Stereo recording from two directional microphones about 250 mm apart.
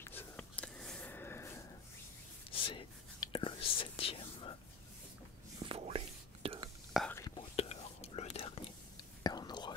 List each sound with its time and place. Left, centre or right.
0.0 s whispering: centre
2.5 s whispering: left
5.6 s whispering: right
6.9 s whispering: centre
7.2 s whispering: centre